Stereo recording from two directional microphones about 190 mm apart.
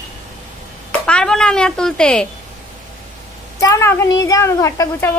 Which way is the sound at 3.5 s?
15° left (ahead or behind).